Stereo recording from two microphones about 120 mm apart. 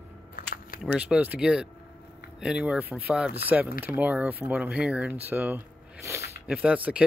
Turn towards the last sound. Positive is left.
turn(degrees=-10)  # may be behind; listen again after turning